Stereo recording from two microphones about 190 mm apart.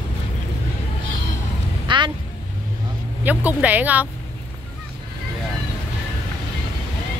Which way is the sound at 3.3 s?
10° right (ahead or behind).